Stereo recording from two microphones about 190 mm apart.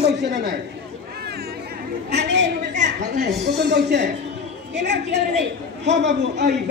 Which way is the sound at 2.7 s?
40° right (ahead or behind).